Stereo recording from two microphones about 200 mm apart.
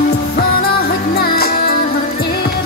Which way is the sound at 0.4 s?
50° left (ahead or behind).